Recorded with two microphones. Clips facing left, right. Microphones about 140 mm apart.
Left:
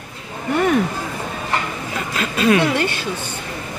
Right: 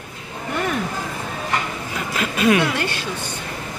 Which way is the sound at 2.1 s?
15° right (ahead or behind).